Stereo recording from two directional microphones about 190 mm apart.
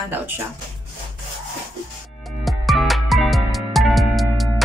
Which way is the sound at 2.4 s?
Centre (ahead or behind).